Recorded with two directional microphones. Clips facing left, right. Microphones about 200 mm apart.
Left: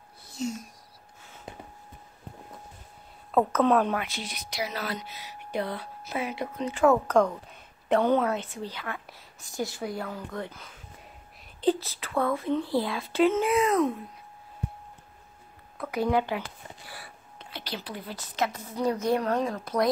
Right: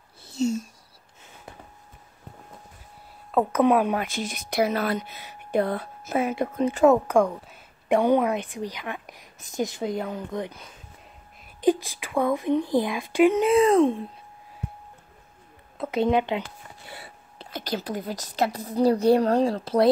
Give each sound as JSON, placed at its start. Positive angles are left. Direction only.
{"t": 0.2, "sound": "a sound", "side_deg": -25}
{"t": 3.5, "sound": "a woman's voice", "side_deg": -10}
{"t": 4.0, "sound": "speech", "side_deg": -45}
{"t": 6.9, "sound": "a woman's voice", "side_deg": -10}
{"t": 13.5, "sound": "speech", "side_deg": -30}
{"t": 15.8, "sound": "speech", "side_deg": -25}
{"t": 16.8, "sound": "a sound", "side_deg": -25}
{"t": 17.5, "sound": "a woman's voice", "side_deg": -45}